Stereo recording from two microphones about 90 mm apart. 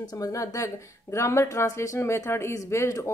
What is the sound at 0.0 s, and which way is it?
Speech, 45° left (ahead or behind).